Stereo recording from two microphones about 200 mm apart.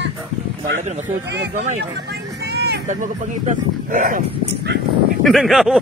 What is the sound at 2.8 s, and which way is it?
Speech, 40° right (ahead or behind).